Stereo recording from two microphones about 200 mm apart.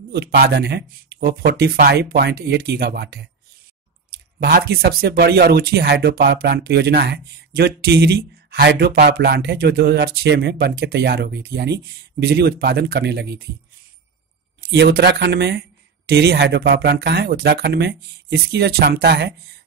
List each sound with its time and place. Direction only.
0.1 s speech: 55° right (ahead or behind)
4.4 s speech: 50° right (ahead or behind)
14.6 s speech: 55° right (ahead or behind)